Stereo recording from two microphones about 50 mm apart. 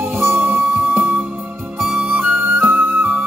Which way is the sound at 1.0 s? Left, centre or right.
Right.